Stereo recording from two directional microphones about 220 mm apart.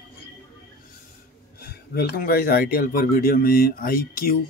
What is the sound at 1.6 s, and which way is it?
Speech, 45° left (ahead or behind).